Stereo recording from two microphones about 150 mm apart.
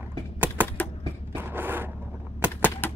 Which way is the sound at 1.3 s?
15° right (ahead or behind).